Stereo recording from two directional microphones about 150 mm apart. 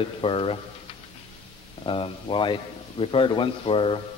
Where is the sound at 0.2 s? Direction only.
35° left (ahead or behind).